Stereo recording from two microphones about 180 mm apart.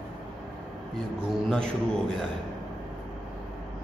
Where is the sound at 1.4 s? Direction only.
5° left (ahead or behind).